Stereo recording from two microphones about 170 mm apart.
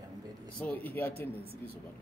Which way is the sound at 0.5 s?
10° left (ahead or behind).